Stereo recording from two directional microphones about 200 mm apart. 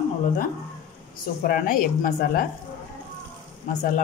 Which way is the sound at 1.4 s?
45° left (ahead or behind).